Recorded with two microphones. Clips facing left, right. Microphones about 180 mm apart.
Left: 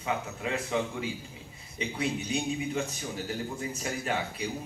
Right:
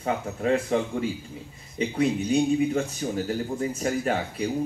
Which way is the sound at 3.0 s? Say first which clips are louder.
Right 7 dB; 45° right (ahead or behind).